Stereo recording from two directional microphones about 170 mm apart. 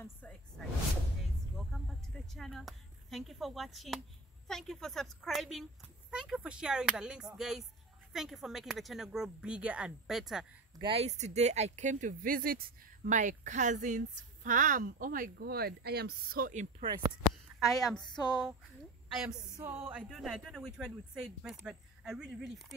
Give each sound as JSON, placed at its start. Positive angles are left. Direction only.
{"t": 1.7, "sound": "speech", "side_deg": 0}
{"t": 10.8, "sound": "speech", "side_deg": -35}
{"t": 17.6, "sound": "speech", "side_deg": 0}
{"t": 18.0, "sound": "a sound", "side_deg": 25}
{"t": 19.6, "sound": "speech", "side_deg": -10}